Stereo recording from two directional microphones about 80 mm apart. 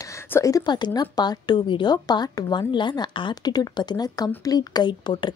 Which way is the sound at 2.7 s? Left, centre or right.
Left.